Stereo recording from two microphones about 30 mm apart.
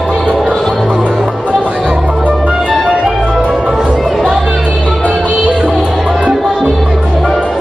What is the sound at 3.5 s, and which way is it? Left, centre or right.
Music, centre.